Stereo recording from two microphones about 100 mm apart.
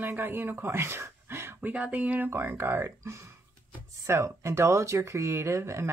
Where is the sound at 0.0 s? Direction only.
20° right (ahead or behind).